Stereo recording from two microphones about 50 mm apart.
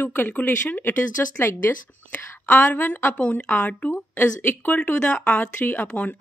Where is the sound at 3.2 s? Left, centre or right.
Left.